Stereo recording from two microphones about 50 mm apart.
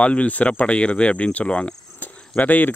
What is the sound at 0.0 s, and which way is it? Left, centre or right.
Speech, left.